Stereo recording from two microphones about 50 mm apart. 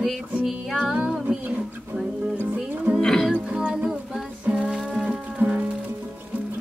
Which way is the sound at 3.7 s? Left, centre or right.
Centre.